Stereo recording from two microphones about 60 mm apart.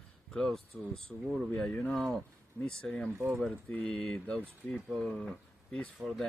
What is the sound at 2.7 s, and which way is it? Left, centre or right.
Speech, centre.